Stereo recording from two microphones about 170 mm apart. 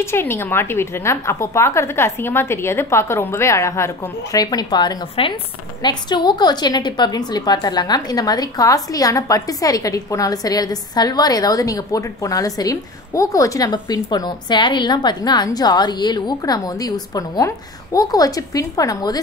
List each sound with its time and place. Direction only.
0.0 s a woman's voice: 15° left (ahead or behind)